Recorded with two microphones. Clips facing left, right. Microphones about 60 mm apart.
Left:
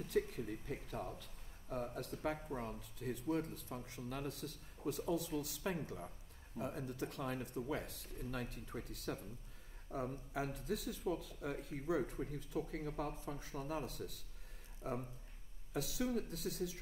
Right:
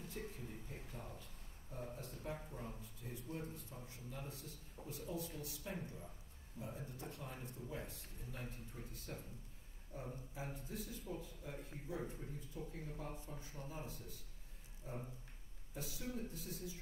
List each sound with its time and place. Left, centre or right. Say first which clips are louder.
0.0 s speech: left 11 dB; left